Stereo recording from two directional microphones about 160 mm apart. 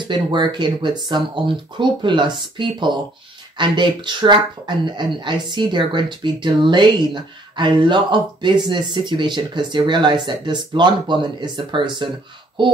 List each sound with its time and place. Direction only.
0.0 s speech: 30° right (ahead or behind)